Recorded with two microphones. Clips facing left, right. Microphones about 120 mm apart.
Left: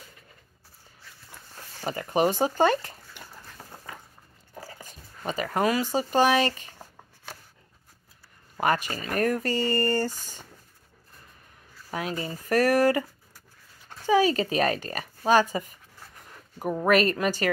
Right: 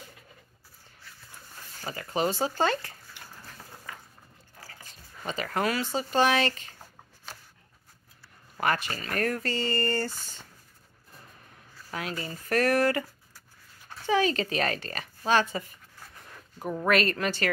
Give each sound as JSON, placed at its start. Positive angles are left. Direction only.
{"t": 1.8, "sound": "speech", "side_deg": 25}
{"t": 4.8, "sound": "a sound", "side_deg": 15}
{"t": 5.6, "sound": "speech", "side_deg": 15}
{"t": 8.7, "sound": "speech", "side_deg": 15}
{"t": 11.9, "sound": "speech", "side_deg": 20}
{"t": 14.0, "sound": "speech", "side_deg": 10}